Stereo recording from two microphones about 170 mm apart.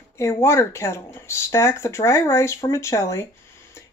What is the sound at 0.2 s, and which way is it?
Speech, 15° left (ahead or behind).